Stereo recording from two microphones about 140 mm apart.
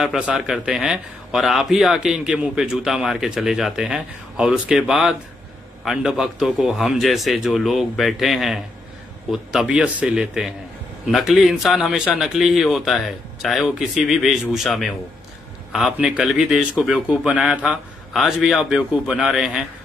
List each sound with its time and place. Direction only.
0.0 s a man's voice: centre (ahead or behind)